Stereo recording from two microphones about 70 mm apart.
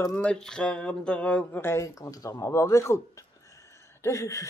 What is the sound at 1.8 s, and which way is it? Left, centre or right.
Speech, left.